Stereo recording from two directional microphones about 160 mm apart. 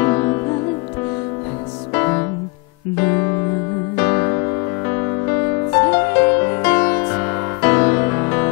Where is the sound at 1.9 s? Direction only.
20° left (ahead or behind).